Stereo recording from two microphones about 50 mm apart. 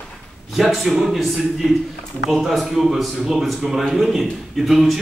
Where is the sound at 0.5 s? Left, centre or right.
Centre.